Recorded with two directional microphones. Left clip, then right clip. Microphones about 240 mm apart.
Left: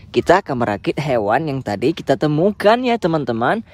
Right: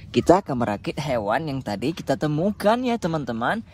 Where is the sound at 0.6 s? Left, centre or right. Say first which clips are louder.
Left 6 dB; left.